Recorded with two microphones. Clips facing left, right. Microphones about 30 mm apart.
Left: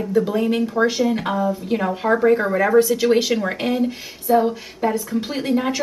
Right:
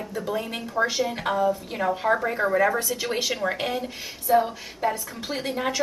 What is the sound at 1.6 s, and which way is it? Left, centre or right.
Speech, centre.